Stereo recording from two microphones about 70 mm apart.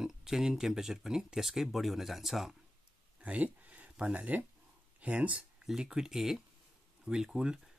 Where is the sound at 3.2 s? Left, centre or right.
Centre.